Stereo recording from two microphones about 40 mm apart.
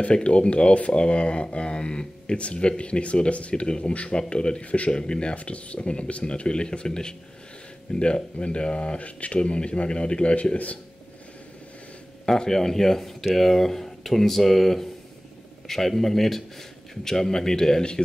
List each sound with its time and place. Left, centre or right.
0.0 s speech: left
4.9 s speech: left
5.4 s speech: left
12.3 s a man's voice: centre